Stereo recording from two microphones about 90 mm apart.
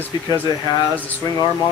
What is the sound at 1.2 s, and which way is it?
Speech, 40° left (ahead or behind).